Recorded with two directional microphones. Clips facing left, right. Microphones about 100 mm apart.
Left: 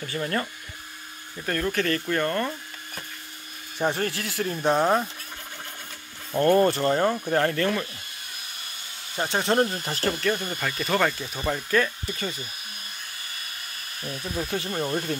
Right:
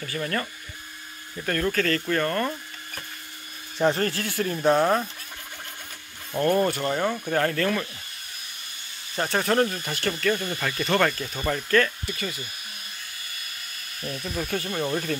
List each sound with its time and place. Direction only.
0.0 s speech: 20° left (ahead or behind)
1.4 s speech: 10° left (ahead or behind)
3.7 s speech: 10° left (ahead or behind)
4.6 s speech: centre (ahead or behind)
6.4 s speech: 5° right (ahead or behind)
7.1 s speech: 5° left (ahead or behind)
7.3 s speech: 25° left (ahead or behind)
9.1 s speech: 15° left (ahead or behind)
9.8 s speech: 35° left (ahead or behind)
10.1 s speech: 20° left (ahead or behind)
10.5 s speech: 5° left (ahead or behind)
12.1 s speech: 35° left (ahead or behind)
14.2 s speech: 20° left (ahead or behind)